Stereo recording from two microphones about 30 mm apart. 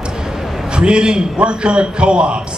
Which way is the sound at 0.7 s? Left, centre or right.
Right.